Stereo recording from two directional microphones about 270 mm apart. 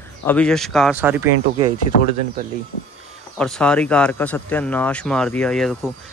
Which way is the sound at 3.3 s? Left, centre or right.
Centre.